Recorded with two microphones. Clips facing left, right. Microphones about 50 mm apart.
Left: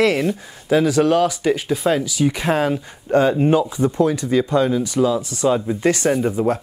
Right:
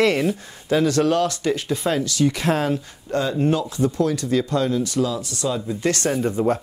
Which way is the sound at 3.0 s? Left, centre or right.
Left.